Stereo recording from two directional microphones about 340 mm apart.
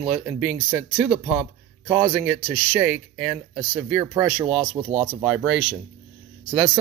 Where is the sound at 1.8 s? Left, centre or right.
Centre.